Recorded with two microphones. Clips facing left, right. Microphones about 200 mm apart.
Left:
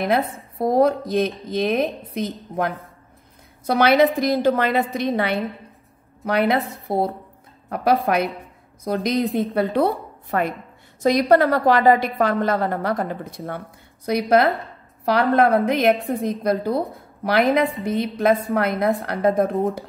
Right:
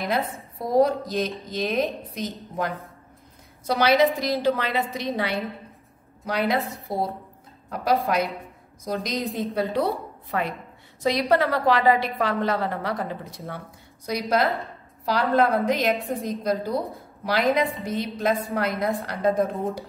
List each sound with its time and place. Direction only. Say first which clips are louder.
0.6 s a woman's voice: left 3 dB; 55° left (ahead or behind)